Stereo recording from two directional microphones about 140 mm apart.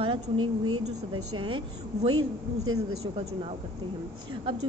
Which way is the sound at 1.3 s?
35° right (ahead or behind).